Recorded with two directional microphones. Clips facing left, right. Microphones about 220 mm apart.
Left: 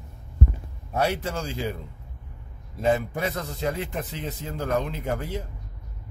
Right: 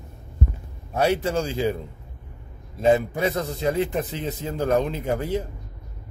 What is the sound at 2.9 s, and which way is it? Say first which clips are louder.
A man's voice: right 5 dB; 20° right (ahead or behind).